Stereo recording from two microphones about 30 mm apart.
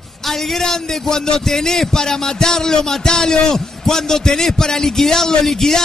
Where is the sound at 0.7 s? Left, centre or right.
Centre.